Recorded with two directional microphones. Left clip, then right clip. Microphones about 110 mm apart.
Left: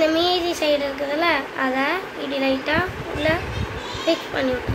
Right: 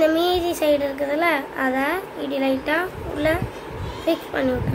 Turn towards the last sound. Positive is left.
turn(degrees=-40)  # may be behind; listen again after turning